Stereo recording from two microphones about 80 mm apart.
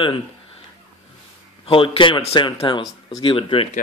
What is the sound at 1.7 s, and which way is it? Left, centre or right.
Speech, left.